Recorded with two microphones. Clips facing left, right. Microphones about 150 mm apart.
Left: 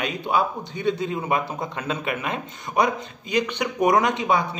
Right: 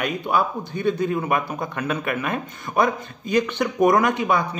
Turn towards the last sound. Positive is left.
turn(degrees=25)  # may be behind; listen again after turning